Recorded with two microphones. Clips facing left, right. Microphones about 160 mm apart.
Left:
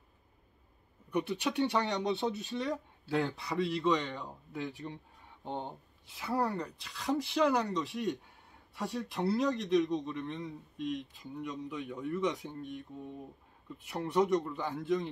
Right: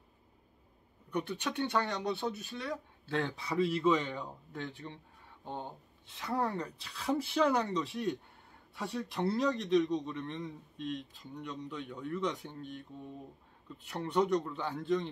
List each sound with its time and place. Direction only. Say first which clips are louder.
1.1 s speech: left 3 dB; 10° left (ahead or behind)
3.1 s a man's voice: left 2 dB; 5° left (ahead or behind); by 6.1 s 20° left (ahead or behind)
6.1 s a man's voice: left 1 dB; 5° left (ahead or behind)